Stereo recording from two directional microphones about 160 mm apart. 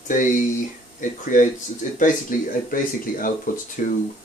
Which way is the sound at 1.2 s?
55° left (ahead or behind).